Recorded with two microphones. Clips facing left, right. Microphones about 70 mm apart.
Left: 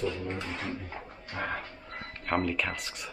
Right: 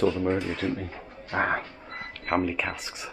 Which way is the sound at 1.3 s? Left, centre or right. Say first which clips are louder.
Right 8 dB; right.